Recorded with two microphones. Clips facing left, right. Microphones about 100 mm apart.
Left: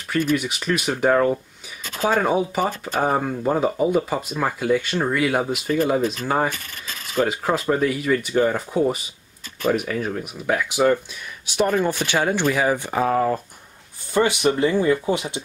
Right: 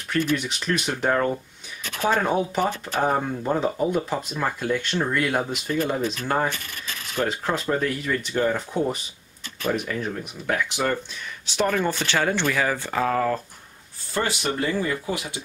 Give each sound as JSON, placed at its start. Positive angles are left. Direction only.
{"t": 0.1, "sound": "speech", "side_deg": 10}